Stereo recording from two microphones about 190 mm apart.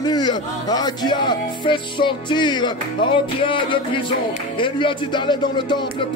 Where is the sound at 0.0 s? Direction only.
20° left (ahead or behind).